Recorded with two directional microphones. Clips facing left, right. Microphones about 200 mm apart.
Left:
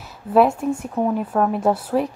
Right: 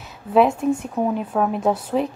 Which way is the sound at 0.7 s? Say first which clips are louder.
Right 1 dB; 5° right (ahead or behind).